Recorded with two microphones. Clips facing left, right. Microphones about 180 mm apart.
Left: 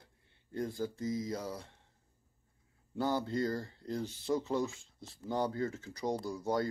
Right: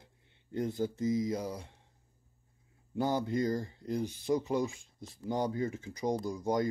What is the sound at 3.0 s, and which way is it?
Speech, 15° right (ahead or behind).